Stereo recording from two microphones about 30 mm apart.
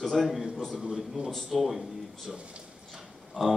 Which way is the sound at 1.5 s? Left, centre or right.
Centre.